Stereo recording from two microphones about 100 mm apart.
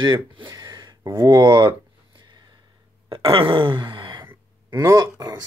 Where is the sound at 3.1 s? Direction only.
65° right (ahead or behind).